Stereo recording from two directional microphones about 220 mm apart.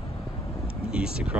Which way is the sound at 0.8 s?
5° right (ahead or behind).